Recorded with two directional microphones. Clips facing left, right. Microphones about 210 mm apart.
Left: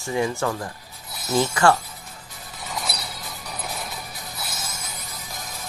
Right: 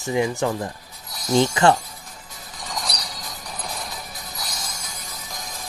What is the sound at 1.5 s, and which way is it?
Speech, 20° right (ahead or behind).